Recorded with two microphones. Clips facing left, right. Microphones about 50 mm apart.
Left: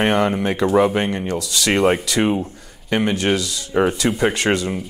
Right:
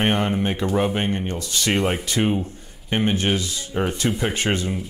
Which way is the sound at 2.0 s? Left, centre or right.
Left.